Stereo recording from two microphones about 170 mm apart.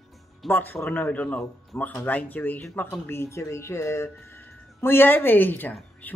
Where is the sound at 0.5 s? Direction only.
10° left (ahead or behind).